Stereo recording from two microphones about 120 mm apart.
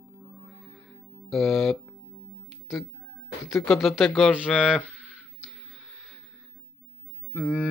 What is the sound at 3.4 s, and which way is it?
Speech, centre (ahead or behind).